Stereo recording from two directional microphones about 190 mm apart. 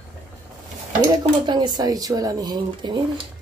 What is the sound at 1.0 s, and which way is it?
Speech, 25° right (ahead or behind).